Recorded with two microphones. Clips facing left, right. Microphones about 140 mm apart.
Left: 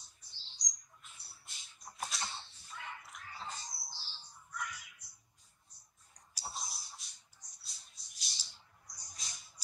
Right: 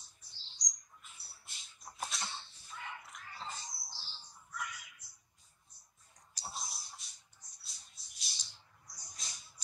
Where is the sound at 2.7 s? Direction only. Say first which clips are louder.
Right 1 dB; centre (ahead or behind).